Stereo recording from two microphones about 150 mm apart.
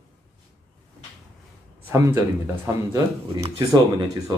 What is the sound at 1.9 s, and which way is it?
Speech, 15° right (ahead or behind).